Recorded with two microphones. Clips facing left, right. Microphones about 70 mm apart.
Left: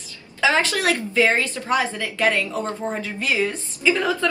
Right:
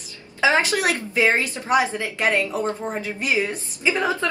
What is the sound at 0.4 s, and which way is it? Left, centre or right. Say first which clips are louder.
A woman's voice: right 1 dB; right.